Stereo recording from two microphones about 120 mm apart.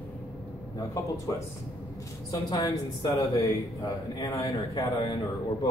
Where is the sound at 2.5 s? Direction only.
35° left (ahead or behind).